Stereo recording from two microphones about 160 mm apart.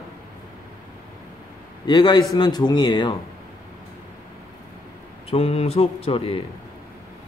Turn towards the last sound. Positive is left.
turn(degrees=35)  # may be behind; listen again after turning